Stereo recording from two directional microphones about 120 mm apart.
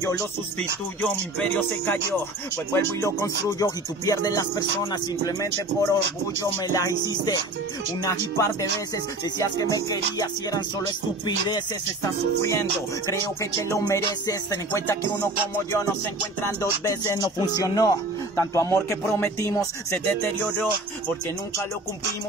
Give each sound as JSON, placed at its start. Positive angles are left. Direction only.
{"t": 1.4, "sound": "speech", "side_deg": 15}
{"t": 9.8, "sound": "speech", "side_deg": 30}
{"t": 16.8, "sound": "speech", "side_deg": 25}